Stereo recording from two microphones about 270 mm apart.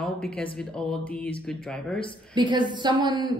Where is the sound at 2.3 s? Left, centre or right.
Centre.